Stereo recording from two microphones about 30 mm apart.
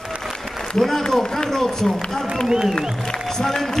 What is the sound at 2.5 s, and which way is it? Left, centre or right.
Speech, right.